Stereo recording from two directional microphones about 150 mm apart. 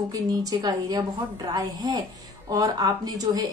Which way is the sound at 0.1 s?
25° right (ahead or behind).